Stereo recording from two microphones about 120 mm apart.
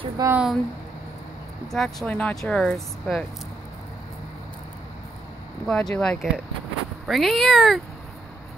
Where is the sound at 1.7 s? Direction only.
5° left (ahead or behind).